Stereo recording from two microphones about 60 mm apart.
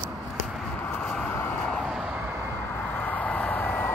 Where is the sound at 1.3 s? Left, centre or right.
Left.